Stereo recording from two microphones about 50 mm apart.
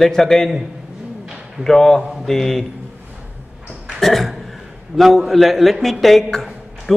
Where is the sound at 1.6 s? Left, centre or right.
Centre.